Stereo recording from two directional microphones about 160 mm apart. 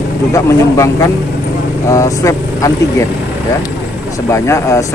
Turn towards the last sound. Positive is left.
turn(degrees=20)  # may be behind; listen again after turning